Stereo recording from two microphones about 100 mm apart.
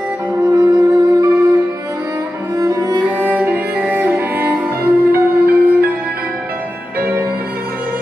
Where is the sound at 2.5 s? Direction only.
35° right (ahead or behind).